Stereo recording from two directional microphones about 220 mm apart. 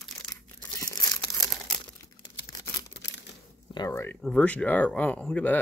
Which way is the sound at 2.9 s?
55° left (ahead or behind).